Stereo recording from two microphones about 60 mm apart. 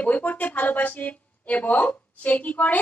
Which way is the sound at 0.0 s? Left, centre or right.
Left.